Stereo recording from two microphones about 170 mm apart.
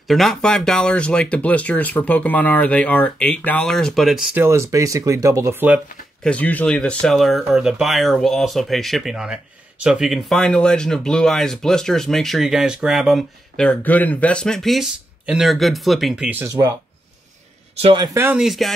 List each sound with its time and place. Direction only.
0.0 s speech: centre (ahead or behind)
6.2 s speech: 10° left (ahead or behind); by 16.4 s 5° right (ahead or behind)
16.4 s speech: 20° right (ahead or behind)
17.8 s speech: 25° right (ahead or behind)
18.1 s speech: 15° right (ahead or behind)
18.4 s speech: centre (ahead or behind)